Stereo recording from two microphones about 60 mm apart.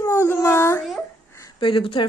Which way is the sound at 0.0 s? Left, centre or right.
Left.